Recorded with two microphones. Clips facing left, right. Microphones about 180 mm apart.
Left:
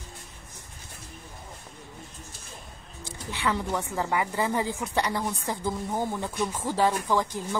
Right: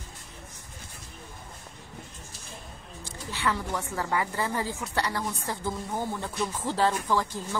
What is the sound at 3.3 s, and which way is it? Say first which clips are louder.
Speech: left 2 dB; 15° left (ahead or behind).